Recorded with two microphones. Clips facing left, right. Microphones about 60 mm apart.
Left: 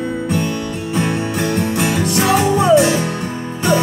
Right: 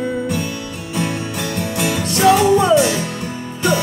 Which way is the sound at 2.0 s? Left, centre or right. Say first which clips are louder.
Right 4 dB; centre.